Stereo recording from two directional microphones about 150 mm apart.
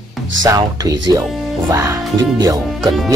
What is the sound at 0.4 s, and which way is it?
Speech, 25° right (ahead or behind).